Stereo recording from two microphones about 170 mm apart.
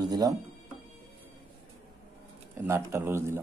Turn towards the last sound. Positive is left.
turn(degrees=-15)  # may be behind; listen again after turning